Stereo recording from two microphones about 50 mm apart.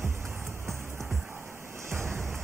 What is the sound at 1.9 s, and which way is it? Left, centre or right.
Rain, right.